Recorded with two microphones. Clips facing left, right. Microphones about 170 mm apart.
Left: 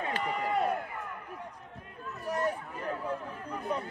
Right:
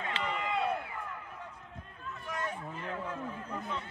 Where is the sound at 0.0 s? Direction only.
40° left (ahead or behind).